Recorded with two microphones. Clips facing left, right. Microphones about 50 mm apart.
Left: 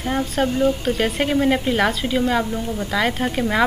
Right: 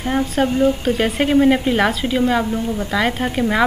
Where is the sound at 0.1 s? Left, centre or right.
Centre.